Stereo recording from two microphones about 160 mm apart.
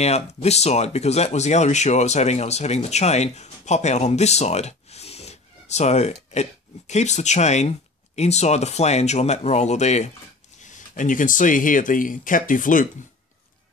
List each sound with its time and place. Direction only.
0.0 s speech: 40° left (ahead or behind)